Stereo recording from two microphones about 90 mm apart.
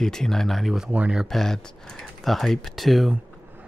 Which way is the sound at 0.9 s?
15° right (ahead or behind).